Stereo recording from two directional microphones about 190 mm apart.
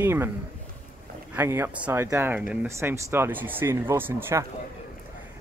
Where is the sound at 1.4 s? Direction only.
10° right (ahead or behind).